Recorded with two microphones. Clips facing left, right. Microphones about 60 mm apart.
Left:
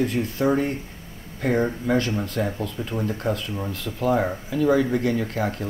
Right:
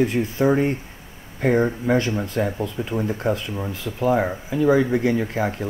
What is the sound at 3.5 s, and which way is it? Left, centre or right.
Speech, centre.